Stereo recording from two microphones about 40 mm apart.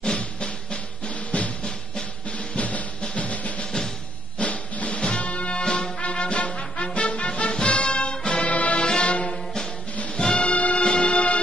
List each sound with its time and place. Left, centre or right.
0.0 s drum: left
4.4 s music: left
8.5 s music: left
8.8 s music: left